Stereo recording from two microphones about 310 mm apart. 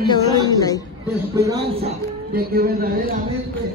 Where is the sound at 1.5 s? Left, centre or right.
Centre.